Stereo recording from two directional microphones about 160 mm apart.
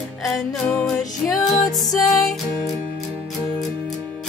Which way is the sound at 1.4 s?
20° left (ahead or behind).